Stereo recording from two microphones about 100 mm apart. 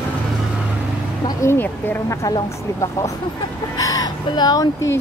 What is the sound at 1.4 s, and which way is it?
Speech, 20° left (ahead or behind).